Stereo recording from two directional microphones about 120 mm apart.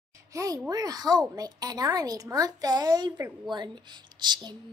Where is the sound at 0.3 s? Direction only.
30° right (ahead or behind).